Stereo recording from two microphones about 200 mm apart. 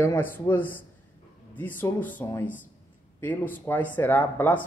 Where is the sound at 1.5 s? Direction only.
10° left (ahead or behind).